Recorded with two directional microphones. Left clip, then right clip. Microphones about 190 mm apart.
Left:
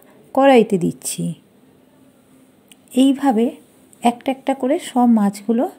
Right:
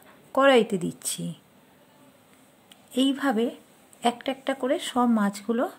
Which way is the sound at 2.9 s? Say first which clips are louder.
Left 9 dB; 15° left (ahead or behind).